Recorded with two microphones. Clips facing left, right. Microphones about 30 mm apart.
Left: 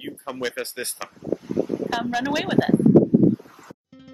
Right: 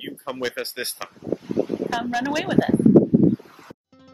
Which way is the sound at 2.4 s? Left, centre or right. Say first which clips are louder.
Right 1 dB; centre.